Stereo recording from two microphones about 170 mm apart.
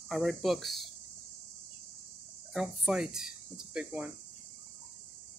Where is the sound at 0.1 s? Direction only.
Centre (ahead or behind).